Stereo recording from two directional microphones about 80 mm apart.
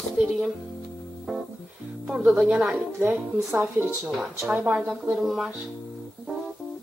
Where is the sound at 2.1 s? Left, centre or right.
Centre.